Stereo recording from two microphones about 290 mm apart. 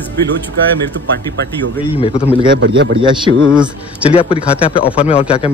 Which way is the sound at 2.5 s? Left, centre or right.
Right.